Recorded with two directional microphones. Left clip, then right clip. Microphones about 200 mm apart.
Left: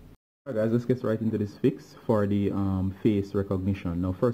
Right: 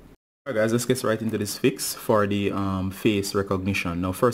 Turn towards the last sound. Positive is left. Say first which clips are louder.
# right 6 dB
turn(degrees=-5)  # may be behind; listen again after turning